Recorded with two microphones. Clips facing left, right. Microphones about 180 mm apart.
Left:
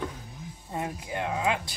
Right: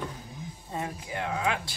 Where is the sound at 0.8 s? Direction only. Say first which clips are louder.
Left 2 dB; 20° left (ahead or behind).